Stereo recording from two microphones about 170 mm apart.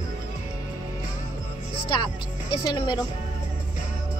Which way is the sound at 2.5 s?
25° left (ahead or behind).